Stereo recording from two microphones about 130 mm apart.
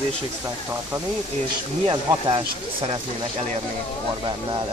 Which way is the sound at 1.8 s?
40° right (ahead or behind).